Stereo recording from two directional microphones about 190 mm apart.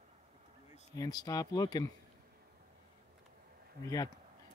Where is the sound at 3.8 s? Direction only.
20° left (ahead or behind).